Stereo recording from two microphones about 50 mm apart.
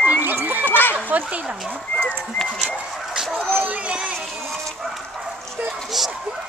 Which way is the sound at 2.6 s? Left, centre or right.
Centre.